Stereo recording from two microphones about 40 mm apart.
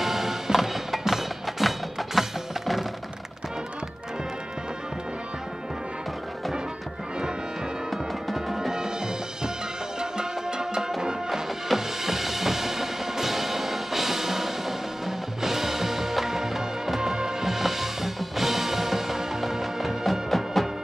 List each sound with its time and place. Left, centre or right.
0.0 s music: centre
7.9 s music: centre
8.5 s music: centre